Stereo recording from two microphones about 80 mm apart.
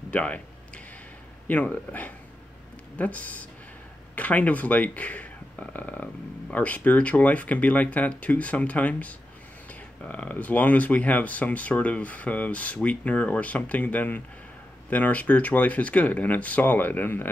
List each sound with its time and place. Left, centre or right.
0.1 s speech: centre
1.5 s speech: centre